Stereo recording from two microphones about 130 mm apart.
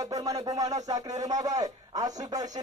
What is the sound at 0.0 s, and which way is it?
Speech, 25° right (ahead or behind).